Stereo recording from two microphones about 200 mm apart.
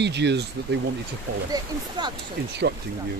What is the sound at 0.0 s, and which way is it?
Speech, 60° right (ahead or behind).